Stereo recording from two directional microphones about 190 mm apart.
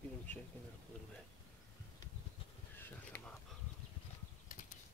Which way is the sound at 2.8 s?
10° left (ahead or behind).